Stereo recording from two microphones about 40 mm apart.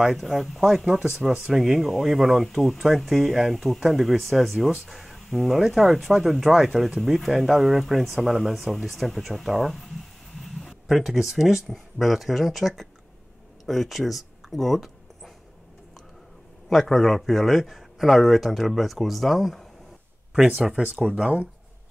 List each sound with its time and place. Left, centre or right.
0.0 s speech: centre
13.7 s a sound: centre
16.6 s speech: centre
20.8 s speech: right